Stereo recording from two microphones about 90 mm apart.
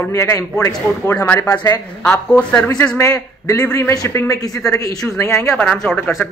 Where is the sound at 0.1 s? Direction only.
30° left (ahead or behind).